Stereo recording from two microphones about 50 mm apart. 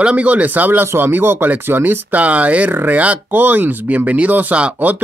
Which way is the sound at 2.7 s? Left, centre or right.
Right.